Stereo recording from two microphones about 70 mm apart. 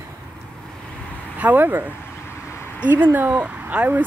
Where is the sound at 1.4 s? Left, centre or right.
Right.